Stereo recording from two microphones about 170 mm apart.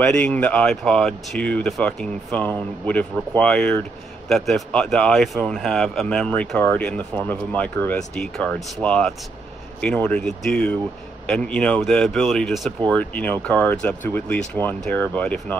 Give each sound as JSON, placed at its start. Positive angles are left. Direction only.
{"t": 0.0, "sound": "speech", "side_deg": 5}